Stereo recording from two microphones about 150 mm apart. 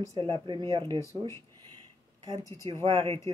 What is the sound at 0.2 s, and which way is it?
Speech, 30° right (ahead or behind).